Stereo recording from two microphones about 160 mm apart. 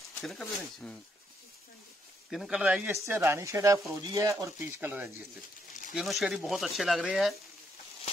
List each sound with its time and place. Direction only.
0.2 s speech: centre (ahead or behind)
2.3 s speech: 5° right (ahead or behind)
5.9 s speech: centre (ahead or behind)